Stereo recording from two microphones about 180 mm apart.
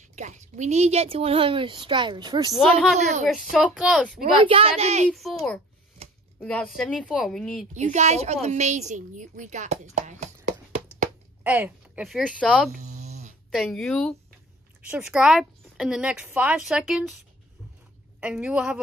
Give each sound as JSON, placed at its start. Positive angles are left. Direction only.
{"t": 0.1, "sound": "a woman's voice", "side_deg": -40}
{"t": 3.0, "sound": "a woman's voice", "side_deg": -40}
{"t": 3.3, "sound": "a woman's voice", "side_deg": 0}
{"t": 4.2, "sound": "a woman's voice", "side_deg": -30}
{"t": 5.1, "sound": "a woman's voice", "side_deg": 0}
{"t": 7.7, "sound": "a woman's voice", "side_deg": -40}
{"t": 11.4, "sound": "a woman's voice", "side_deg": -10}
{"t": 12.7, "sound": "a sound", "side_deg": -40}
{"t": 13.6, "sound": "a woman's voice", "side_deg": 0}
{"t": 18.2, "sound": "a woman's voice", "side_deg": -5}